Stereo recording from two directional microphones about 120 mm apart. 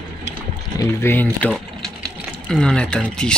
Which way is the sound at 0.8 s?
20° left (ahead or behind).